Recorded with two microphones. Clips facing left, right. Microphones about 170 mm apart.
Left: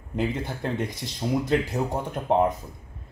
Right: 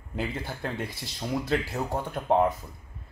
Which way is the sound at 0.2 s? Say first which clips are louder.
Left 4 dB; 20° left (ahead or behind).